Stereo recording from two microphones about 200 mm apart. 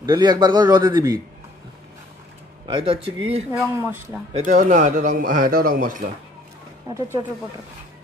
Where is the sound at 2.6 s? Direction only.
25° right (ahead or behind).